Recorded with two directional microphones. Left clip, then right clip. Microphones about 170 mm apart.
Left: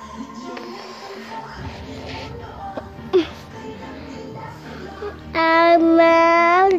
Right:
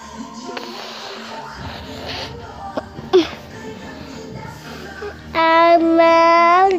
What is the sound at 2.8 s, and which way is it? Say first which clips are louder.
Music: right 4 dB; 5° right (ahead or behind).